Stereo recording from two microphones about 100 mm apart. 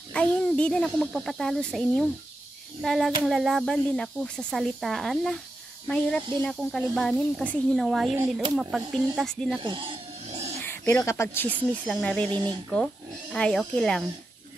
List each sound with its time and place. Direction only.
0.1 s a child's voice: 10° left (ahead or behind)
9.6 s a sound: 55° right (ahead or behind); by 10.5 s 75° right (ahead or behind)
10.6 s bird: 20° left (ahead or behind)
11.0 s speech: 30° left (ahead or behind)
12.0 s a child's voice: 10° left (ahead or behind)
12.3 s speech: 45° right (ahead or behind)
12.6 s a child's voice: 5° left (ahead or behind)